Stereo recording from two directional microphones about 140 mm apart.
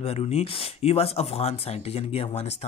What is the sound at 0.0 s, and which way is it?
Speech, 45° left (ahead or behind).